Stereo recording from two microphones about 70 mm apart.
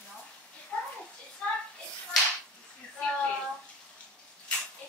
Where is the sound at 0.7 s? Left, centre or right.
Centre.